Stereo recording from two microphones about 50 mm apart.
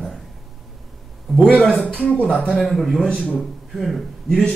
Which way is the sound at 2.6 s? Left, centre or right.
Centre.